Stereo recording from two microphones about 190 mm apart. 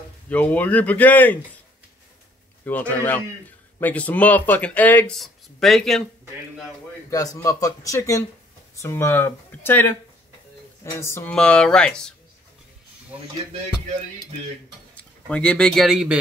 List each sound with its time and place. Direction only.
0.3 s speech: 10° left (ahead or behind)
2.6 s speech: 10° left (ahead or behind)
7.1 s speech: 20° left (ahead or behind)
15.2 s speech: 5° left (ahead or behind)